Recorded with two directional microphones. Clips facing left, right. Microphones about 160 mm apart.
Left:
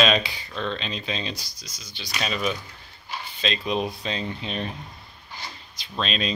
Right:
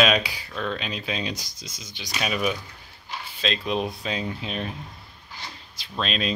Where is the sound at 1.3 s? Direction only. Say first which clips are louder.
Right 3 dB; 20° right (ahead or behind).